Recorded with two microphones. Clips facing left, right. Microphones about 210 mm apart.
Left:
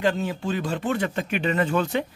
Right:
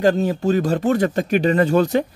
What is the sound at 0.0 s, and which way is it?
Speech, 40° right (ahead or behind).